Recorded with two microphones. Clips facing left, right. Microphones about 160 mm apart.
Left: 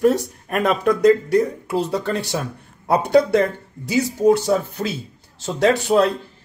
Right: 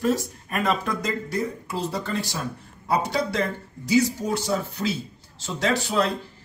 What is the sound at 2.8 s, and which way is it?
A man's voice, 55° left (ahead or behind).